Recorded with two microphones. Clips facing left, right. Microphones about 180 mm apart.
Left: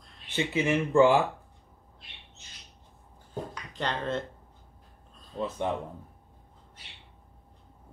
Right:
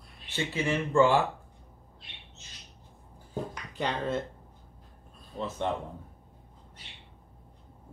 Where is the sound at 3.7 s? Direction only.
10° right (ahead or behind).